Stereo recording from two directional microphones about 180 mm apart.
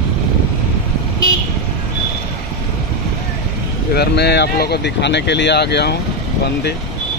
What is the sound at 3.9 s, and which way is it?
Speech, 65° left (ahead or behind).